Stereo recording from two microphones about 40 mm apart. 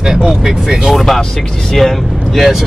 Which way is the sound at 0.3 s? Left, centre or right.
Centre.